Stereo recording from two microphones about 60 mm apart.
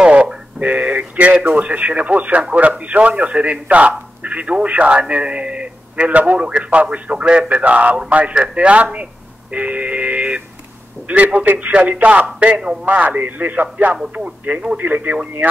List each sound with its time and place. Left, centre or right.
0.0 s a man's voice: centre
9.5 s a sound: right
11.1 s a man's voice: right